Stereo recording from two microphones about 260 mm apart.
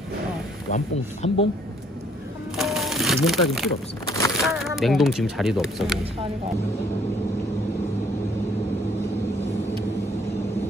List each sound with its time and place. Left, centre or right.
0.7 s speech: left
2.5 s music: centre
3.3 s speech: centre